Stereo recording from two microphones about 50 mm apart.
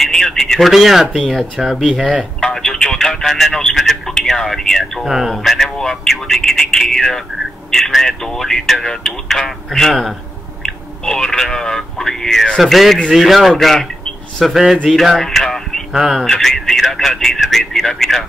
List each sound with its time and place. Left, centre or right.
0.0 s speech: centre
0.7 s a man's voice: centre
5.0 s a man's voice: centre
14.4 s a man's voice: centre
15.9 s speech: centre
16.3 s a man's voice: centre